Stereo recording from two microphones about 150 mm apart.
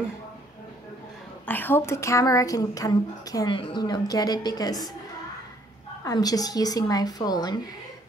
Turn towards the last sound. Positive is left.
turn(degrees=25)  # may be behind; listen again after turning